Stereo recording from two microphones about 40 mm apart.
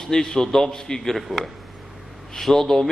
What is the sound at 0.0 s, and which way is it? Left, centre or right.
A man's voice, centre.